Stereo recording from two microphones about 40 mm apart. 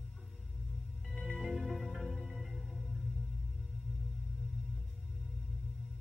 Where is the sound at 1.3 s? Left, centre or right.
Centre.